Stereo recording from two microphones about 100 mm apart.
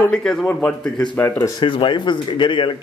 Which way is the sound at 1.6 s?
55° left (ahead or behind).